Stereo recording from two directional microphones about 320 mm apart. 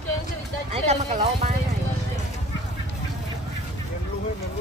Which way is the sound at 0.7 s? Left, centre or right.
Centre.